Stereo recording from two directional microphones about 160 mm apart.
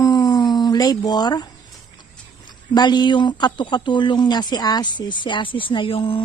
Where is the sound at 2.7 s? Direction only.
25° left (ahead or behind).